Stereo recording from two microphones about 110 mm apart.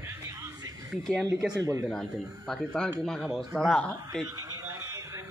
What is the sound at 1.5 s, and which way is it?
Speech, 25° right (ahead or behind).